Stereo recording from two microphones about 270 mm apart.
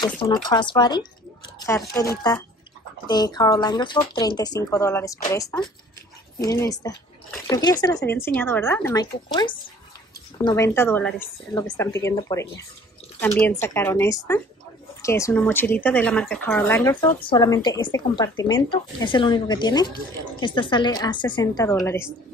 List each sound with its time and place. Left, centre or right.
0.0 s speech: centre